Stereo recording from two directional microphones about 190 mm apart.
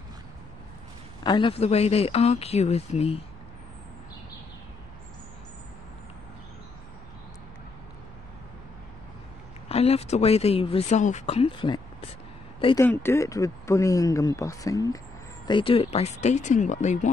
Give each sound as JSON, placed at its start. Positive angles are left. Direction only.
{"t": 1.2, "sound": "speech", "side_deg": 25}
{"t": 9.7, "sound": "speech", "side_deg": 30}
{"t": 12.7, "sound": "speech", "side_deg": 15}